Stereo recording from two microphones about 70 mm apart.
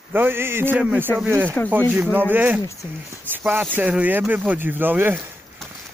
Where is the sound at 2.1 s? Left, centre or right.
Right.